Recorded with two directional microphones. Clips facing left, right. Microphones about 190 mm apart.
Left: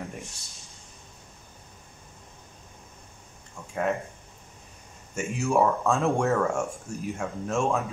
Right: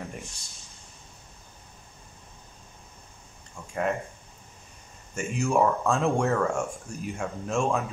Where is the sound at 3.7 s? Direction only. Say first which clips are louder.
Left 1 dB; centre (ahead or behind).